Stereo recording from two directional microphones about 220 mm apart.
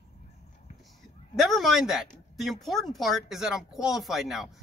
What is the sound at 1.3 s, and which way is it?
Speech, centre (ahead or behind).